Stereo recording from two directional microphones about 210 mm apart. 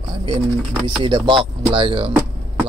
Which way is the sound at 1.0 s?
25° right (ahead or behind).